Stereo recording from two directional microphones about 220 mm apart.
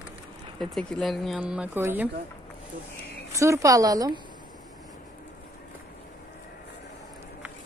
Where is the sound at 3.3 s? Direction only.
15° right (ahead or behind).